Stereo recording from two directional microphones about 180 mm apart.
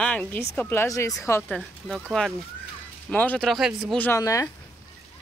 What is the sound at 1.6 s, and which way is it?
Speech, 5° right (ahead or behind).